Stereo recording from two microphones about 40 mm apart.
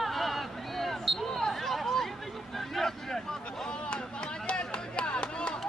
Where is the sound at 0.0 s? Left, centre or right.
Centre; by 5.6 s left.